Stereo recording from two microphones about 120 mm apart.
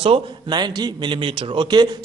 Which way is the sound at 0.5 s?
35° right (ahead or behind).